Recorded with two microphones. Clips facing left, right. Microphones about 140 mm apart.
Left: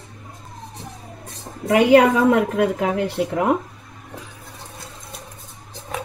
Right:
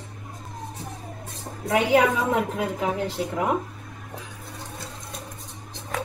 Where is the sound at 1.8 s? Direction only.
65° left (ahead or behind).